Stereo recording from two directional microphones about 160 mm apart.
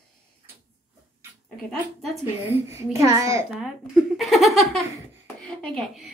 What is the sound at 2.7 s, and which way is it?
Speech, 20° right (ahead or behind).